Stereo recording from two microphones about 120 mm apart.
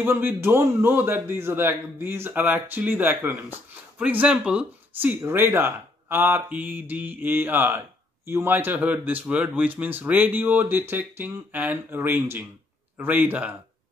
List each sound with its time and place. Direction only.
0.0 s a man's voice: 15° right (ahead or behind)